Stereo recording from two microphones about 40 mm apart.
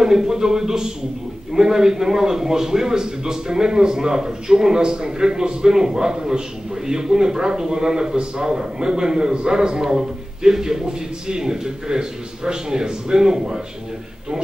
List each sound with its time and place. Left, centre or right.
0.0 s a man's voice: centre